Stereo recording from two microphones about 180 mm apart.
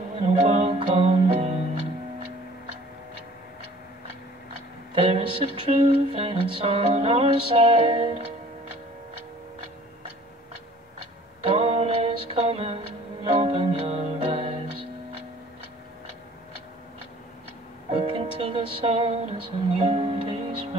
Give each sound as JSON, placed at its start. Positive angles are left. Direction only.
{"t": 0.2, "sound": "music", "side_deg": -35}
{"t": 5.0, "sound": "music", "side_deg": -35}
{"t": 11.4, "sound": "a sound", "side_deg": -35}
{"t": 17.9, "sound": "music", "side_deg": -30}